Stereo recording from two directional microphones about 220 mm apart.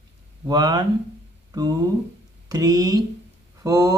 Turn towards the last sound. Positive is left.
turn(degrees=-15)  # may be behind; listen again after turning